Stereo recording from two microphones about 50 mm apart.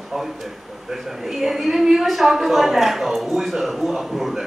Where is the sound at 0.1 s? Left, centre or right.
Centre.